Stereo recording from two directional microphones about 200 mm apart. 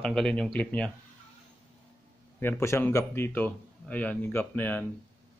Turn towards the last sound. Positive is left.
turn(degrees=10)  # may be behind; listen again after turning